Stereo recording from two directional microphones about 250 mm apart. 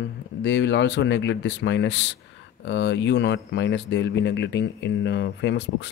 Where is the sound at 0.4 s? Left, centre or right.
Left.